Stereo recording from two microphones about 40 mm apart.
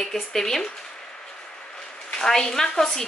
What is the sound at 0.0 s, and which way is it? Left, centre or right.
Speech, centre.